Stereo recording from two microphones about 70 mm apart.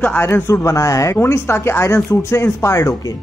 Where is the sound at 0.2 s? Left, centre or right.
Left.